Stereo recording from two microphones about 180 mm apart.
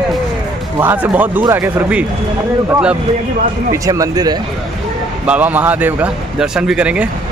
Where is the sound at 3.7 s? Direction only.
20° right (ahead or behind).